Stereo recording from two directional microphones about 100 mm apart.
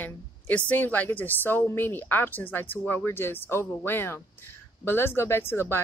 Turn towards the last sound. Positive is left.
turn(degrees=25)  # may be behind; listen again after turning